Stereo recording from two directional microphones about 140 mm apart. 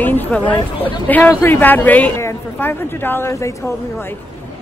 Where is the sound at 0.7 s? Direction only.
40° left (ahead or behind).